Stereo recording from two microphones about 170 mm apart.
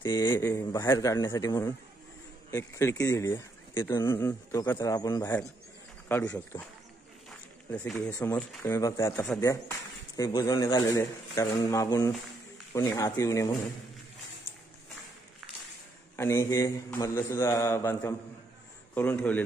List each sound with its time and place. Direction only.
0.0 s a man's voice: 25° left (ahead or behind)
0.3 s a man's voice: 15° left (ahead or behind)
7.2 s walk: 5° left (ahead or behind)
8.1 s a man's voice: 10° left (ahead or behind)
16.2 s speech: 15° left (ahead or behind)